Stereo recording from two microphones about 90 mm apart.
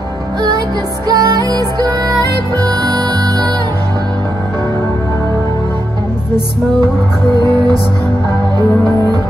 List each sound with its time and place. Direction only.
1.0 s music: 50° right (ahead or behind)
8.5 s music: 45° right (ahead or behind)